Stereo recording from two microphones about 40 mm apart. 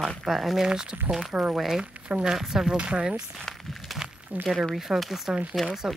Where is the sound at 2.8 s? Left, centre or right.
Right.